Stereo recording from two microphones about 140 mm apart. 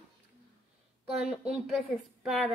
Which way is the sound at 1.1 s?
5° right (ahead or behind).